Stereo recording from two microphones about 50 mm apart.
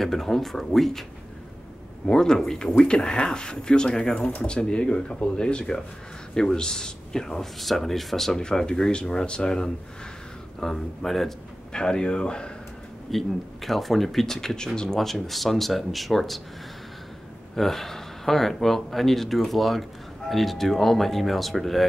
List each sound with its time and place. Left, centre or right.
0.0 s speech: centre
2.0 s speech: centre
4.1 s speech: left; by 8.4 s centre
8.4 s speech: centre
13.1 s speech: centre
17.6 s speech: centre